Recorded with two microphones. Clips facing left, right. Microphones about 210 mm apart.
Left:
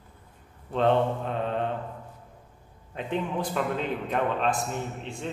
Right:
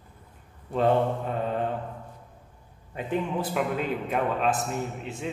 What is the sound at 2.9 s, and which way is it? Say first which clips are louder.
A man's voice: right 1 dB; 5° right (ahead or behind).